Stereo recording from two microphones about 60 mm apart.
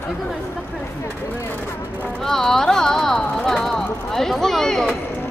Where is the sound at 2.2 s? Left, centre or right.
Centre.